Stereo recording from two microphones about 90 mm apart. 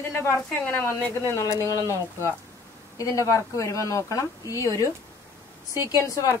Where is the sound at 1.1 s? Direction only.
30° left (ahead or behind).